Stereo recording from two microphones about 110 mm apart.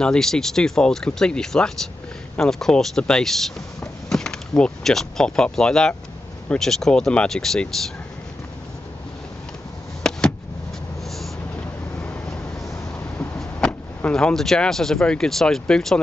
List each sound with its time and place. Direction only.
0.0 s speech: 5° left (ahead or behind)
10.0 s a sound: 5° left (ahead or behind)
12.0 s vehicle: 10° left (ahead or behind)
13.4 s speech: 10° left (ahead or behind)